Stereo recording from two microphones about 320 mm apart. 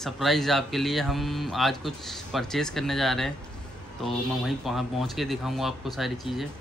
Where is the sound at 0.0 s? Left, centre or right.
Centre.